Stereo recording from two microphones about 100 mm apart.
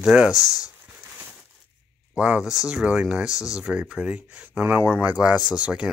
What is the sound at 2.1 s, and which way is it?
Speech, 10° right (ahead or behind).